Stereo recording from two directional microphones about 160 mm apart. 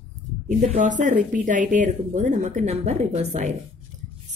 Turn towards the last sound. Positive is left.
turn(degrees=-45)  # may be behind; listen again after turning